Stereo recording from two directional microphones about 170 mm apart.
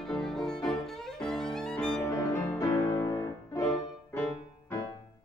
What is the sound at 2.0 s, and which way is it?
Music, 15° left (ahead or behind).